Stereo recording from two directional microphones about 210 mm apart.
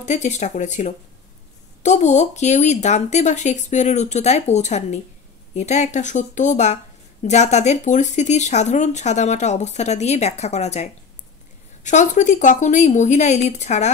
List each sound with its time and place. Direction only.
0.0 s speech: 35° left (ahead or behind)